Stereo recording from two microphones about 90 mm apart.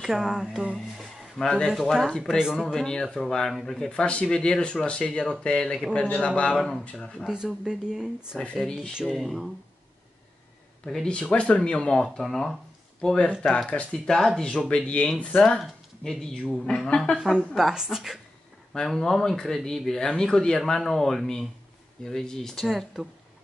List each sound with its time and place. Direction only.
0.0 s speech: 5° right (ahead or behind)
0.7 s speech: 5° left (ahead or behind)
1.7 s speech: centre (ahead or behind)
2.8 s speech: 5° left (ahead or behind)
7.2 s speech: 5° right (ahead or behind)
10.9 s speech: 10° left (ahead or behind)
17.2 s speech: 5° right (ahead or behind)